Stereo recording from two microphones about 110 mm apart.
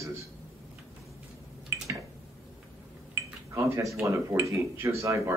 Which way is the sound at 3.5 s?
25° right (ahead or behind).